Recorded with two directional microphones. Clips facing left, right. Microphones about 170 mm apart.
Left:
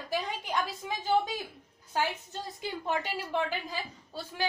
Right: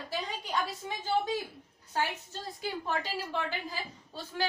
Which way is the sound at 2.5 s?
20° left (ahead or behind).